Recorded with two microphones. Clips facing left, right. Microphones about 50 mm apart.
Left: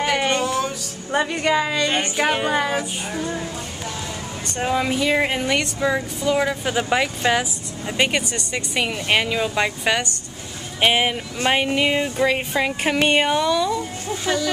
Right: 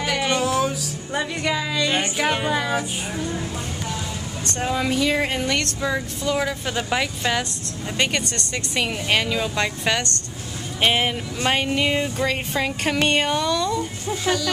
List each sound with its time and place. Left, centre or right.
0.0 s music: centre
0.4 s music: centre
1.1 s a woman's voice: centre
1.9 s music: centre
2.5 s speech: centre
4.5 s speech: centre